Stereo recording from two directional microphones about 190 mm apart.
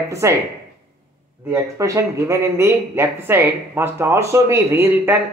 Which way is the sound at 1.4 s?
15° right (ahead or behind).